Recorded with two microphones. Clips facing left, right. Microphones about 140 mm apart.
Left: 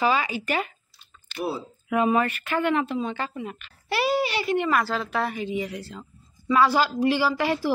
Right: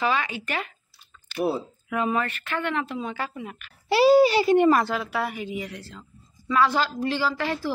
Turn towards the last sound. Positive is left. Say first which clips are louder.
# left 3 dB
turn(degrees=10)  # may be behind; listen again after turning